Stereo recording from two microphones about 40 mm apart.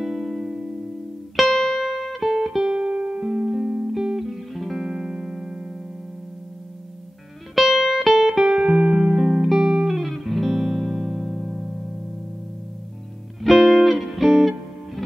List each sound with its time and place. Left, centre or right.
0.0 s music: centre
2.6 s music: right
3.2 s music: centre
4.2 s music: centre
7.5 s music: centre
8.5 s music: centre
10.2 s music: centre
13.4 s music: centre